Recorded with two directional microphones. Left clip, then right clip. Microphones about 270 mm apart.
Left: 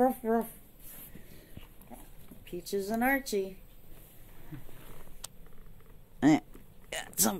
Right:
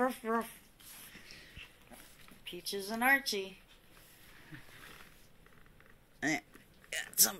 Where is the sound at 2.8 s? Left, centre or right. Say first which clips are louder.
Right 1 dB; right.